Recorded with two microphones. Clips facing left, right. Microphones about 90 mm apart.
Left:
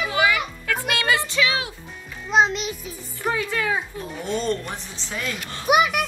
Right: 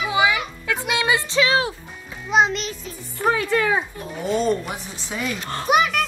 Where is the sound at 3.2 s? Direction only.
60° right (ahead or behind).